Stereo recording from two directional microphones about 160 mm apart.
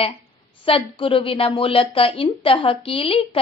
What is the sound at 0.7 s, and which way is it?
A woman's voice, 35° left (ahead or behind).